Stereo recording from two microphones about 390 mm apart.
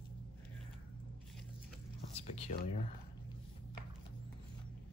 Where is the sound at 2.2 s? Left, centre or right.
Centre.